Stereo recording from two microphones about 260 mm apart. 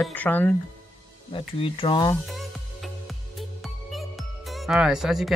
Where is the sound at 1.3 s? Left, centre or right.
Left.